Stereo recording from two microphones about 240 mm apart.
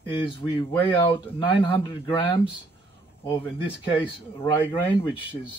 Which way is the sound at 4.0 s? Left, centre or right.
Centre.